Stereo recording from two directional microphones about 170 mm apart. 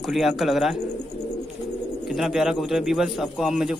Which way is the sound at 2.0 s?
Centre (ahead or behind).